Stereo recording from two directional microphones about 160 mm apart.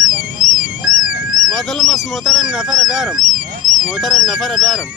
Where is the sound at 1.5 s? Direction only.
Centre (ahead or behind).